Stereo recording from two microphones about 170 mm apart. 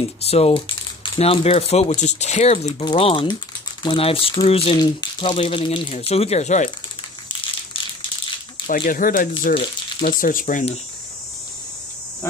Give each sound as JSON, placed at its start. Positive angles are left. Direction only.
{"t": 0.2, "sound": "speech", "side_deg": 35}
{"t": 8.6, "sound": "speech", "side_deg": 55}
{"t": 9.5, "sound": "speech", "side_deg": 30}
{"t": 10.0, "sound": "speech", "side_deg": 55}